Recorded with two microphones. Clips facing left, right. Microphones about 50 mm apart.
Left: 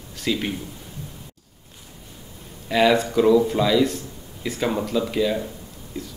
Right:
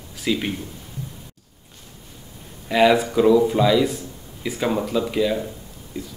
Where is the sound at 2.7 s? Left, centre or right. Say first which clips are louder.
Right 2 dB; centre.